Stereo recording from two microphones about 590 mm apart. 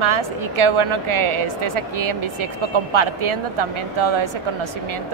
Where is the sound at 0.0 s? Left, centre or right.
Right.